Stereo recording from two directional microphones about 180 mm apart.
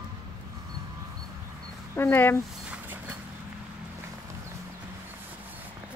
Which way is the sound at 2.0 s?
10° left (ahead or behind).